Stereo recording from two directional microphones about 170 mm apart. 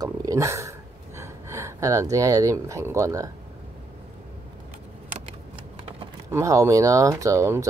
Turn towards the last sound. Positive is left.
turn(degrees=-15)  # may be behind; listen again after turning